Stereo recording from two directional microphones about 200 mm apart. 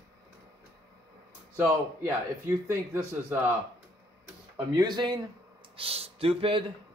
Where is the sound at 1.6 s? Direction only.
15° right (ahead or behind).